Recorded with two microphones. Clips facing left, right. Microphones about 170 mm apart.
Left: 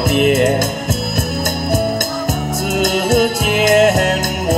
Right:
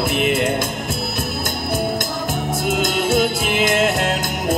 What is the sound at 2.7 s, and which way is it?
Music, 45° left (ahead or behind).